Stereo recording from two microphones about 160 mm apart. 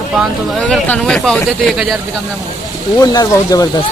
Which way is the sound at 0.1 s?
5° left (ahead or behind).